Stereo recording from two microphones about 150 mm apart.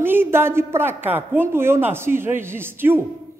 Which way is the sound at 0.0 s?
15° right (ahead or behind).